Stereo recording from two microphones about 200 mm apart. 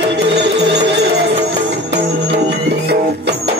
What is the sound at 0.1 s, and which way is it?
Music, 60° right (ahead or behind).